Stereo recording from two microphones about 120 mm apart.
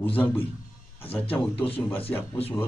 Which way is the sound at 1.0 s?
15° left (ahead or behind).